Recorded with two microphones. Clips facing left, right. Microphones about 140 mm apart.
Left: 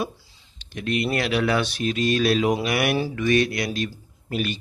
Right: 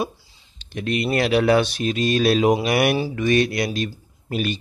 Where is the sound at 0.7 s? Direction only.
25° right (ahead or behind).